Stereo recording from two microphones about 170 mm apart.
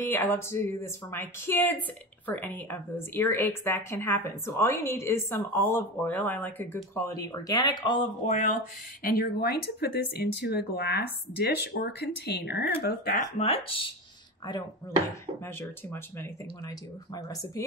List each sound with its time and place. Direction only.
0.0 s a woman's voice: 10° left (ahead or behind); by 8.1 s 25° left (ahead or behind)
8.3 s speech: 45° left (ahead or behind)
9.0 s speech: 65° left (ahead or behind)
13.4 s speech: 35° left (ahead or behind)
15.4 s speech: 15° left (ahead or behind)